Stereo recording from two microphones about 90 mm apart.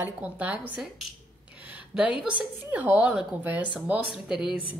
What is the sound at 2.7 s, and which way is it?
Speech, 20° right (ahead or behind).